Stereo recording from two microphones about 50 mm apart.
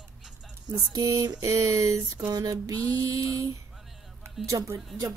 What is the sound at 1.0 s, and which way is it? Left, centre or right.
Speech, right.